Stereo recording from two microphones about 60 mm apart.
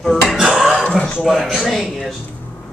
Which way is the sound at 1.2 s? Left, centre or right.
Centre.